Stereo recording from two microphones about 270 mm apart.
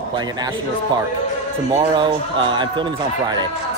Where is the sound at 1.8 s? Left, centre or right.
Centre.